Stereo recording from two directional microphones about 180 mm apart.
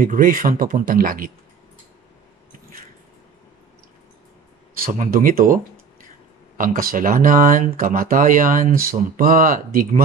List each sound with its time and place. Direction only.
0.0 s speech: 50° right (ahead or behind)
4.8 s speech: 50° right (ahead or behind)
6.6 s speech: 50° right (ahead or behind)